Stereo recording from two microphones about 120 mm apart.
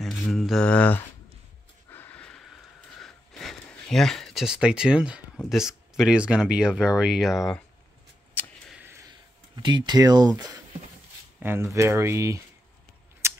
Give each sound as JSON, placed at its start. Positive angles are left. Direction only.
{"t": 0.0, "sound": "speech", "side_deg": 0}
{"t": 1.9, "sound": "a sound", "side_deg": 15}
{"t": 5.4, "sound": "speech", "side_deg": -5}
{"t": 9.6, "sound": "speech", "side_deg": -40}
{"t": 11.3, "sound": "speech", "side_deg": -20}
{"t": 13.2, "sound": "a sound", "side_deg": -20}